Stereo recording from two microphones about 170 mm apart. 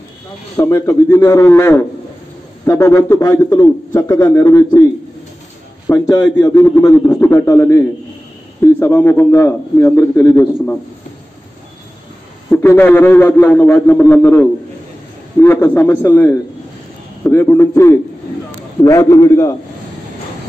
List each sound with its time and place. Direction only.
0.6 s a man's voice: 15° left (ahead or behind)
5.9 s a man's voice: 20° left (ahead or behind)
12.4 s a man's voice: 10° left (ahead or behind)